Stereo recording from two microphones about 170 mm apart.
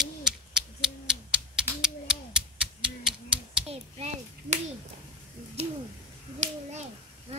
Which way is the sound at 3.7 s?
40° right (ahead or behind).